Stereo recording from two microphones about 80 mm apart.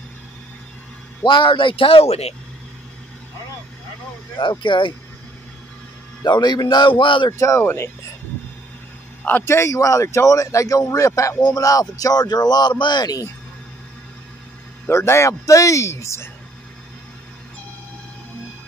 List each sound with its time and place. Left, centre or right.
1.2 s speech: left
4.4 s speech: left
6.2 s a man's voice: left
7.3 s speech: left
9.4 s speech: left
14.9 s speech: left